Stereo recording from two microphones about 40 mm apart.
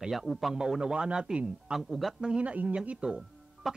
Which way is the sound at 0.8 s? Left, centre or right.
Right.